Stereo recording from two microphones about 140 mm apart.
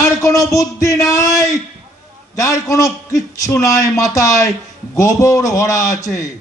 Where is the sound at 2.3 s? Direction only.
20° left (ahead or behind).